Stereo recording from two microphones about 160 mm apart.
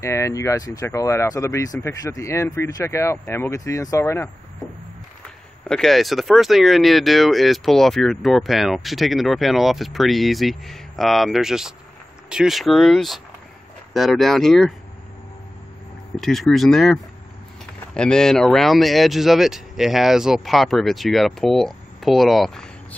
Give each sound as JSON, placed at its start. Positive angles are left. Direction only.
{"t": 0.0, "sound": "speech", "side_deg": 20}
{"t": 5.7, "sound": "speech", "side_deg": 0}
{"t": 16.2, "sound": "speech", "side_deg": 0}